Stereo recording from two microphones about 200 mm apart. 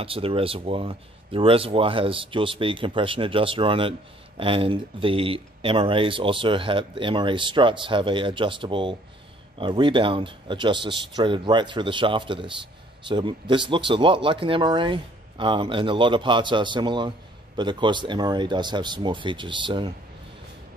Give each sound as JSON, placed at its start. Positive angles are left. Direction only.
{"t": 0.0, "sound": "speech", "side_deg": -25}